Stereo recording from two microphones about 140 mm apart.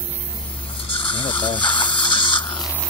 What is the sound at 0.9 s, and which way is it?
Gush, 35° left (ahead or behind).